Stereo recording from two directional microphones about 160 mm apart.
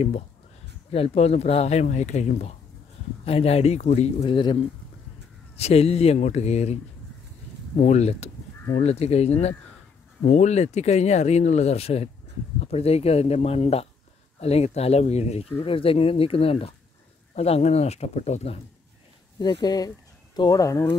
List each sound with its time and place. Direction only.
0.9 s speech: 40° left (ahead or behind)
5.6 s speech: 40° left (ahead or behind)
19.3 s speech: 25° left (ahead or behind)